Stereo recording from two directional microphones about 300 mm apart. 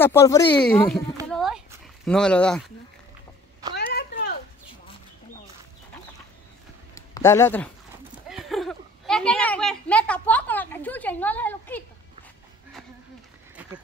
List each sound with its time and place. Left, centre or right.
0.0 s speech: centre
1.3 s dog: centre
2.0 s speech: centre
3.7 s a sound: left
7.0 s a woman's voice: centre
13.6 s a sound: centre